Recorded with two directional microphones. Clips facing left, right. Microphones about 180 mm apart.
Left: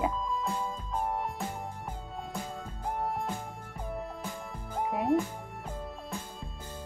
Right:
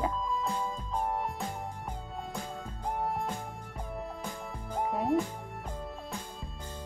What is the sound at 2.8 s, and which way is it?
Music, centre (ahead or behind).